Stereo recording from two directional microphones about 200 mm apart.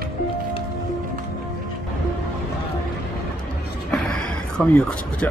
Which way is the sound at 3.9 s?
5° left (ahead or behind).